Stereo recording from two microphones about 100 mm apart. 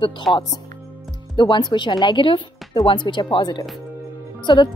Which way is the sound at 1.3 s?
50° left (ahead or behind).